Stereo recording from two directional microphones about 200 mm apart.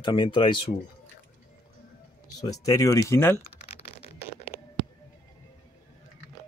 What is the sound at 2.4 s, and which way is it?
Speech, 20° left (ahead or behind).